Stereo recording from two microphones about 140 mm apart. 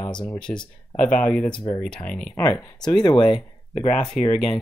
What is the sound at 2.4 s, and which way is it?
Speech, 30° left (ahead or behind).